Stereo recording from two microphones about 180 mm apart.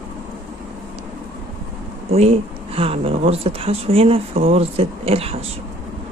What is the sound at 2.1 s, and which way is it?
Speech, 35° right (ahead or behind).